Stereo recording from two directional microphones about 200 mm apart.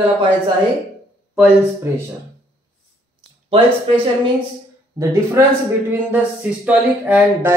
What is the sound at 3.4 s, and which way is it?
Speech, 30° right (ahead or behind).